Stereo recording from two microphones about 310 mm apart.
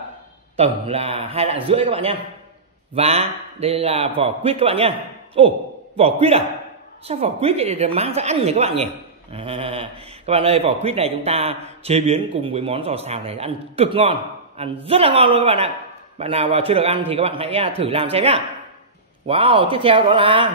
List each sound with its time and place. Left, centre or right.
0.6 s a man's voice: centre